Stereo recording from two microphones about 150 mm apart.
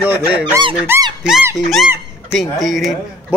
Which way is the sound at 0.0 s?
10° right (ahead or behind).